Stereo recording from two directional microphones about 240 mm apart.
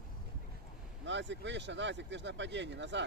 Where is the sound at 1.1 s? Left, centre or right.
Right.